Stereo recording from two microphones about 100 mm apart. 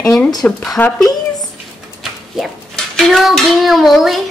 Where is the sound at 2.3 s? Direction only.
Centre (ahead or behind).